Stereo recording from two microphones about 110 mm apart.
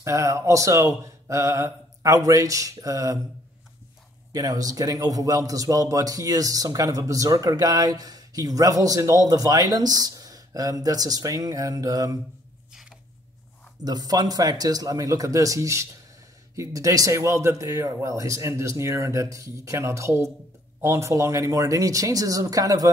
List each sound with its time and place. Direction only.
0.0 s speech: 30° right (ahead or behind)
4.3 s a man's voice: 35° right (ahead or behind)
13.8 s a man's voice: 35° right (ahead or behind)